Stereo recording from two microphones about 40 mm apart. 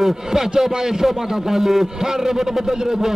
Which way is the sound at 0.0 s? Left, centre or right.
Centre.